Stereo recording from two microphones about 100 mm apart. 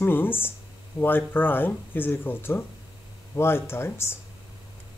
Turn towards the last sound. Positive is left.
turn(degrees=25)  # may be behind; listen again after turning